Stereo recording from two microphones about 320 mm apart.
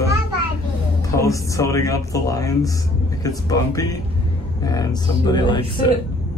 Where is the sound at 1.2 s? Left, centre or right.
Centre.